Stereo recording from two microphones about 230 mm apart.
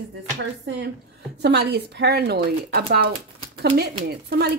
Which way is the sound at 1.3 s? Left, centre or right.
Right.